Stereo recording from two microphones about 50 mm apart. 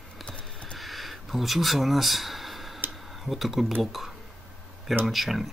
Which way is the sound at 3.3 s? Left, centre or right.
Centre.